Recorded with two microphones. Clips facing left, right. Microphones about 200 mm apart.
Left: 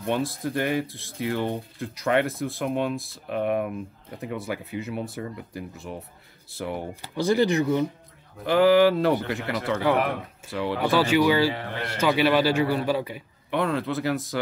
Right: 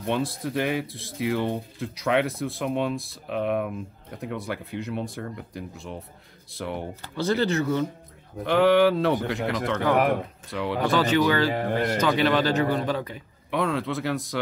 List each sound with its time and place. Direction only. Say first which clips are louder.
0.0 s a man's voice: even; centre (ahead or behind)
8.5 s a man's voice: left 1 dB; centre (ahead or behind)
11.5 s a man's voice: right 8 dB; 45° right (ahead or behind)
12.0 s a man's voice: left 4 dB; 10° left (ahead or behind)